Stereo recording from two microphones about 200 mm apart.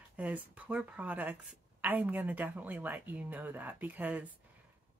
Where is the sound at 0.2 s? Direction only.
10° right (ahead or behind).